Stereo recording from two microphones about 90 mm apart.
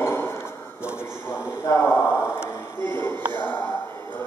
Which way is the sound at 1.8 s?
25° left (ahead or behind).